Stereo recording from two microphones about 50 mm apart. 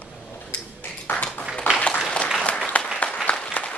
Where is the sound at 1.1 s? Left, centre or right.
Left.